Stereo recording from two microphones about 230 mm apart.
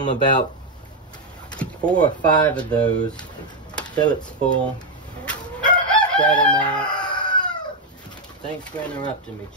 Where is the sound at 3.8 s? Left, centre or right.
Centre.